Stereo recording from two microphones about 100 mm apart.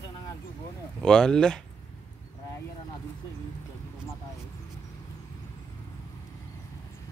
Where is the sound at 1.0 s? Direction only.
5° left (ahead or behind).